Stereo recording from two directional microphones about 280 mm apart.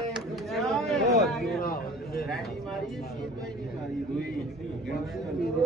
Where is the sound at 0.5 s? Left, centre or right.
Centre.